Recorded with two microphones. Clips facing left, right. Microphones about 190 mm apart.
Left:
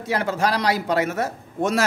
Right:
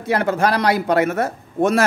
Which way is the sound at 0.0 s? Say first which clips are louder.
Right 4 dB; 55° right (ahead or behind).